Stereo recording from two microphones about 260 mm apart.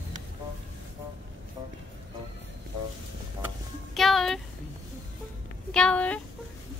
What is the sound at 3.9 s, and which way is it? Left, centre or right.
Music, centre.